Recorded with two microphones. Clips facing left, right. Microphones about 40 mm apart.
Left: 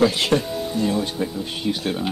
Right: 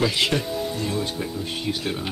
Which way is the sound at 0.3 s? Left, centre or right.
Left.